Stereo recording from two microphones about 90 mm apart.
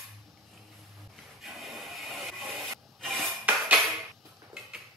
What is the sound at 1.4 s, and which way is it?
Rub, centre (ahead or behind).